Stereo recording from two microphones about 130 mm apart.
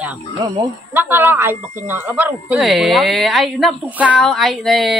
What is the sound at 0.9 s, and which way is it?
Speech, 15° right (ahead or behind).